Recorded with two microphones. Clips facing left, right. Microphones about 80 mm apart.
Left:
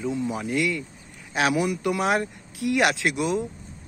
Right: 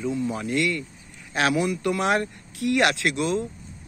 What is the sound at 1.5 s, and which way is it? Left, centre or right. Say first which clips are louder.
Speech: even; centre.